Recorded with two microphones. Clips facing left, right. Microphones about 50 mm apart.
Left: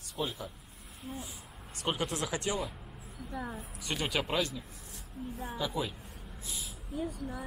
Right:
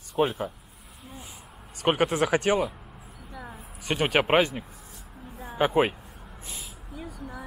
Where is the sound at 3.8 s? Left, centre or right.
Right.